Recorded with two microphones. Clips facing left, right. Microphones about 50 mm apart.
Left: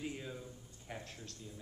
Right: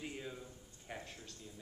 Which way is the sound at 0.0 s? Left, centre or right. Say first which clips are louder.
Left 2 dB; centre.